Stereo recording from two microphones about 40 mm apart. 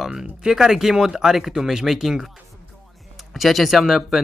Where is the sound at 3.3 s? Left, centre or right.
Centre.